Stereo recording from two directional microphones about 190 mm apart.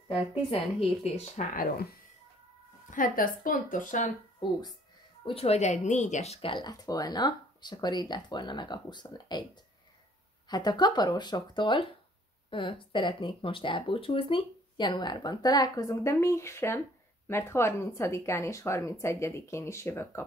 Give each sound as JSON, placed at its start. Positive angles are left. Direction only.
{"t": 0.1, "sound": "speech", "side_deg": 30}
{"t": 5.2, "sound": "speech", "side_deg": 30}
{"t": 10.5, "sound": "a woman's voice", "side_deg": 20}